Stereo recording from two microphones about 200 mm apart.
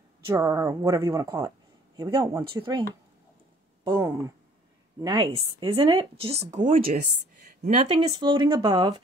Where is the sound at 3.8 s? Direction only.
15° right (ahead or behind); by 6.9 s 45° right (ahead or behind).